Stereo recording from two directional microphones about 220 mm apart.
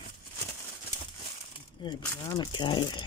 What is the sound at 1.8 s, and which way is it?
Speech, 20° left (ahead or behind).